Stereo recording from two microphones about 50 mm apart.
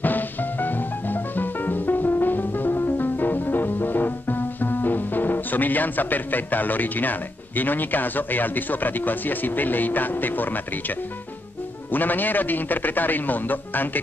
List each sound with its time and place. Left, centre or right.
0.0 s music: left
11.9 s a man's voice: left